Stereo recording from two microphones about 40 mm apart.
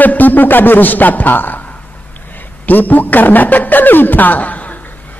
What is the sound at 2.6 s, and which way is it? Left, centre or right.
Speech, left.